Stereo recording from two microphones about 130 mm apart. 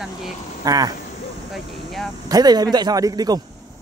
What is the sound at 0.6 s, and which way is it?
Speech, 30° right (ahead or behind).